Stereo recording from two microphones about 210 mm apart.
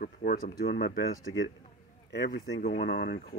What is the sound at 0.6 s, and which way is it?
Speech, 50° left (ahead or behind).